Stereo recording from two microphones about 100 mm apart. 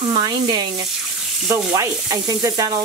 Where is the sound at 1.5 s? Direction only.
30° right (ahead or behind).